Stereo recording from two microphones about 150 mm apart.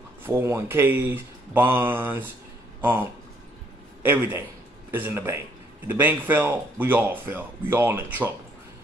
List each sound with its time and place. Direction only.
0.2 s speech: 15° right (ahead or behind)